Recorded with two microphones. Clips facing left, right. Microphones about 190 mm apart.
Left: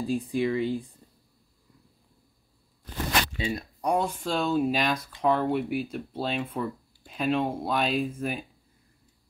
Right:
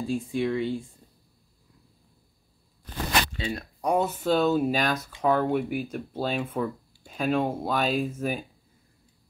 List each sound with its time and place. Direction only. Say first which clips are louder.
0.0 s speech: left 1 dB; centre (ahead or behind)
3.5 s speech: right 2 dB; 5° right (ahead or behind)